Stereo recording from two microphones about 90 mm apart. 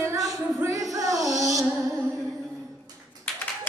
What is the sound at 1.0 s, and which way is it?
Music, 40° right (ahead or behind).